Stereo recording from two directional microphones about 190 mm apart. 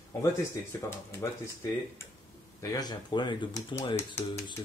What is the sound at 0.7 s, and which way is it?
Speech, 10° left (ahead or behind).